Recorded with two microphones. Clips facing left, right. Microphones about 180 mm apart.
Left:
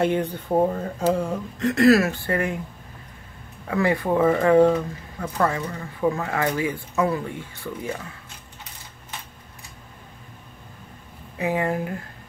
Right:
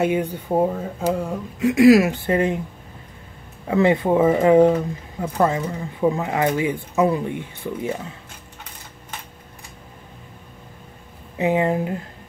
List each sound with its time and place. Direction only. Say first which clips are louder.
0.0 s speech: right 1 dB; 10° right (ahead or behind)
3.6 s speech: right 5 dB; 20° right (ahead or behind)
11.3 s speech: right 4 dB; 20° right (ahead or behind)